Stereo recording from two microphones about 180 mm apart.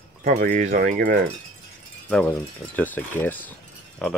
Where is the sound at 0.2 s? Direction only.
45° right (ahead or behind).